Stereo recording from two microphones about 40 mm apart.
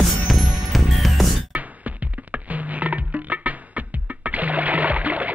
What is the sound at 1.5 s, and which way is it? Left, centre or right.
Music, right.